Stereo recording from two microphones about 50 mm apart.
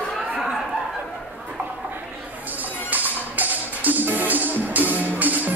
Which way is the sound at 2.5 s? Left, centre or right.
Right.